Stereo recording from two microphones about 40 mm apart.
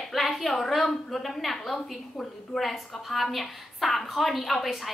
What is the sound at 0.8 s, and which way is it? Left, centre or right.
A woman's voice, centre.